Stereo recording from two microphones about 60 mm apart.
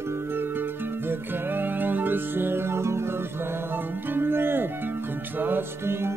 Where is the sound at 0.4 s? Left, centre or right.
Right.